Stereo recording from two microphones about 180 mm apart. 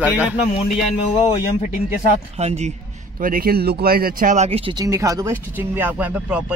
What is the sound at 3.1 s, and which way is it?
Speech, 50° right (ahead or behind).